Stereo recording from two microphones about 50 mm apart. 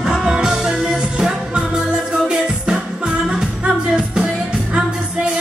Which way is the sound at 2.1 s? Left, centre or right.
Centre.